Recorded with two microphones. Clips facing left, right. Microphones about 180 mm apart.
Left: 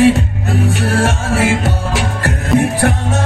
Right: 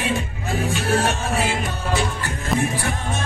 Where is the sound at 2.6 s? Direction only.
70° left (ahead or behind).